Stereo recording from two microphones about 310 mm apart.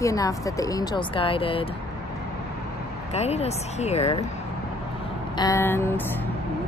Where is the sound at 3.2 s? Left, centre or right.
Left.